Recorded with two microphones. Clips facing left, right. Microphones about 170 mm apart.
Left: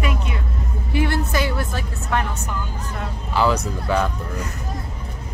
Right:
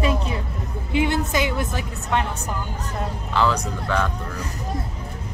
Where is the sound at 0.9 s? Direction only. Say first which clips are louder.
Even; 20° right (ahead or behind).